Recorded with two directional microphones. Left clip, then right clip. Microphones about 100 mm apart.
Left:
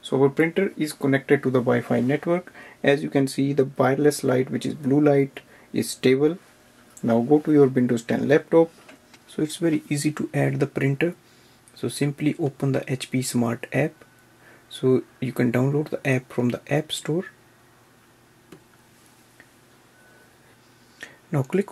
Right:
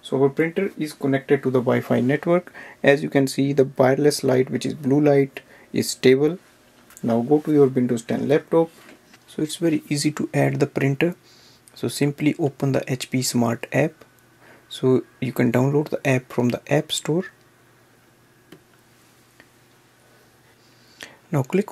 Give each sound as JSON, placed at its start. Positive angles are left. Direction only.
{"t": 0.0, "sound": "speech", "side_deg": 0}
{"t": 1.7, "sound": "speech", "side_deg": -35}
{"t": 7.1, "sound": "speech", "side_deg": -10}
{"t": 21.0, "sound": "a sound", "side_deg": -20}